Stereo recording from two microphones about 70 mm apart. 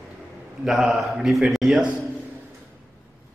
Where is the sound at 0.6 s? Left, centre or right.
Centre.